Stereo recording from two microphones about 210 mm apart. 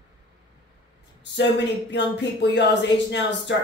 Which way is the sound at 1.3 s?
55° left (ahead or behind).